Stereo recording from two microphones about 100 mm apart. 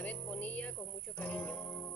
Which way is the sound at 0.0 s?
15° left (ahead or behind).